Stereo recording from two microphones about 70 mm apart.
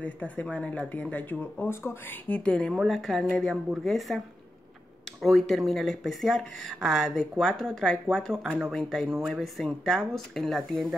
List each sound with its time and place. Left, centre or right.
0.0 s speech: left
1.7 s speech: left
2.2 s a woman's voice: centre
5.2 s speech: centre